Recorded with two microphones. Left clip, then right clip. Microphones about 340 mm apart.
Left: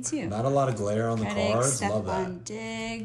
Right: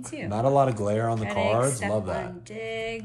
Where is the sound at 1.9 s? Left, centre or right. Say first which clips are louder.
Even; centre.